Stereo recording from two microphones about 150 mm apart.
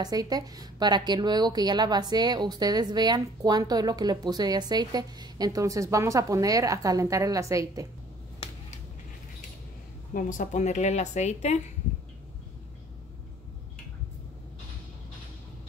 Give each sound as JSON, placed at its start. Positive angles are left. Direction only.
{"t": 0.0, "sound": "a woman's voice", "side_deg": -25}
{"t": 10.1, "sound": "speech", "side_deg": 55}